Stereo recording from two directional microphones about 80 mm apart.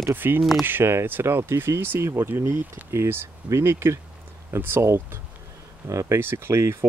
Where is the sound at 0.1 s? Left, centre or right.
Right.